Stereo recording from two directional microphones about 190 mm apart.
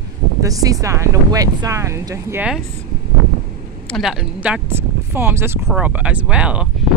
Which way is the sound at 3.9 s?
Centre (ahead or behind).